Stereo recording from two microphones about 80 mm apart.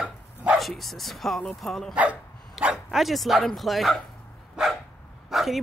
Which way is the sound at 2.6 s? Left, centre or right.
Centre.